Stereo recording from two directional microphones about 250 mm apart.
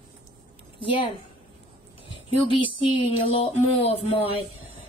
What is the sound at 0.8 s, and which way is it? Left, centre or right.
Speech, left.